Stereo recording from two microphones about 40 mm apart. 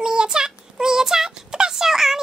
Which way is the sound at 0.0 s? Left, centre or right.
Centre.